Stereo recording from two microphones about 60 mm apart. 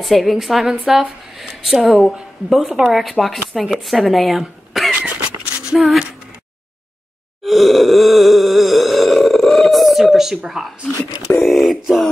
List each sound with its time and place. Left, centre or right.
0.0 s a woman's voice: centre
5.0 s a sound: centre
7.4 s grunt: centre
11.3 s a woman's voice: centre